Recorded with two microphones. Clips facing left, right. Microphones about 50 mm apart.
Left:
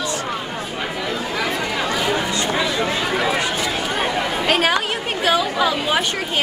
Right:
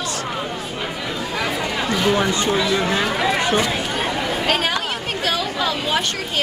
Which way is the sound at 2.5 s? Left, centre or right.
Centre.